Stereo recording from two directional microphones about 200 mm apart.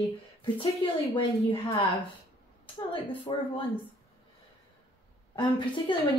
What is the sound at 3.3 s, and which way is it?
Speech, 25° left (ahead or behind).